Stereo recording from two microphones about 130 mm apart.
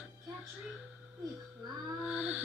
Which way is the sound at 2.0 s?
10° right (ahead or behind).